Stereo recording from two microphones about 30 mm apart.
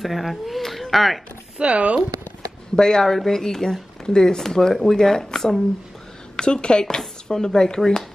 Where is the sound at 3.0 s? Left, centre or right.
Centre.